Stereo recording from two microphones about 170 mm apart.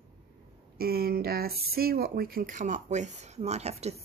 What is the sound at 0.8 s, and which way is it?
Speech, 65° right (ahead or behind).